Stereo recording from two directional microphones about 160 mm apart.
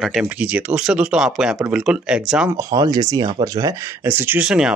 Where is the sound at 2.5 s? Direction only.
25° right (ahead or behind); by 4.7 s 5° right (ahead or behind).